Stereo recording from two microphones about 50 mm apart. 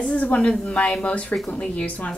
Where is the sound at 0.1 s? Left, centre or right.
Left.